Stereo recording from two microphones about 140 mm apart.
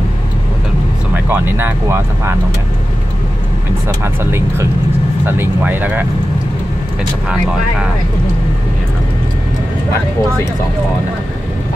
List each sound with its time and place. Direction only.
1.1 s speech: 15° right (ahead or behind)
4.0 s speech: 20° right (ahead or behind)
7.2 s speech: 5° right (ahead or behind)